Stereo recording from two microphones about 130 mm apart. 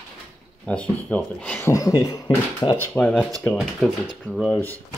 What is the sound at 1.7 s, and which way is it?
Speech, 25° left (ahead or behind).